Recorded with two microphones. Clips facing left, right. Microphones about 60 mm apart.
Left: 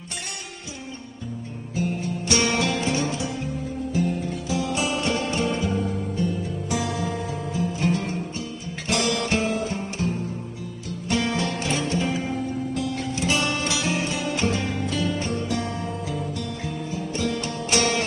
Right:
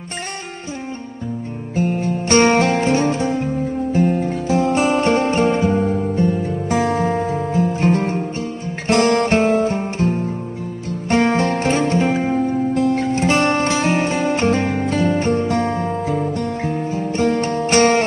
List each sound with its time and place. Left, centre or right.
1.8 s music: right